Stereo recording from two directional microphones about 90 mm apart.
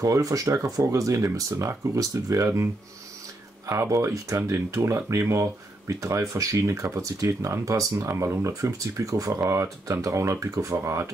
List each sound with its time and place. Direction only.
0.0 s speech: 40° right (ahead or behind)
4.4 s speech: 25° right (ahead or behind)